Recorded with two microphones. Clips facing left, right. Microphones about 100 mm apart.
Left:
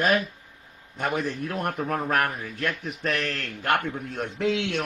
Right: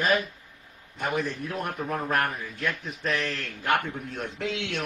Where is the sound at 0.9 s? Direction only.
50° left (ahead or behind).